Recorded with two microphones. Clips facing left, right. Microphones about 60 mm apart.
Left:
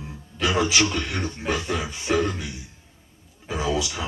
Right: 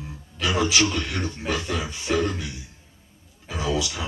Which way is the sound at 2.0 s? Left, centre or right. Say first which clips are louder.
Left 1 dB; centre.